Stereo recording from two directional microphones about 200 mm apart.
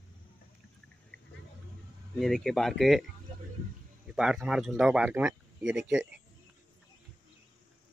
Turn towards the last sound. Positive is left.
turn(degrees=-5)  # may be behind; listen again after turning